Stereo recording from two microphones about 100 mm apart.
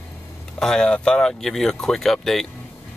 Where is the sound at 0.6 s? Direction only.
5° left (ahead or behind).